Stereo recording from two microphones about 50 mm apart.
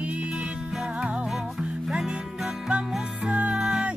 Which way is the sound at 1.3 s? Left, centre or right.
Centre.